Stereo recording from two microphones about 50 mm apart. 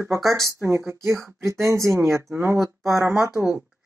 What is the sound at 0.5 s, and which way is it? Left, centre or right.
Speech, right.